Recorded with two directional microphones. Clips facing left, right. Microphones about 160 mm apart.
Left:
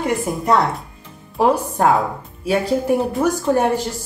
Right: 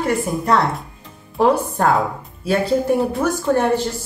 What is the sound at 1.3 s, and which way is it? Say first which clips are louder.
Speech: right 1 dB; 10° left (ahead or behind).